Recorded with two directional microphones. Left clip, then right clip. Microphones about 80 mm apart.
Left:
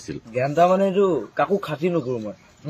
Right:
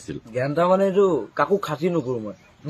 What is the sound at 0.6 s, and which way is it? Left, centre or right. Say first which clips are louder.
Speech: left 1 dB; right.